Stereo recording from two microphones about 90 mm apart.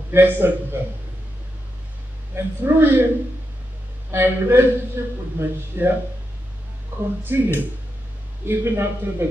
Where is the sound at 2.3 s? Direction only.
25° right (ahead or behind).